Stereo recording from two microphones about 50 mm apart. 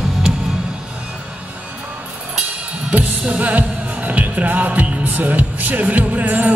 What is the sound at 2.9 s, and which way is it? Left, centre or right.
Music, right.